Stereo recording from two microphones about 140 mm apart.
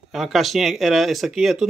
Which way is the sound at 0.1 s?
Centre (ahead or behind).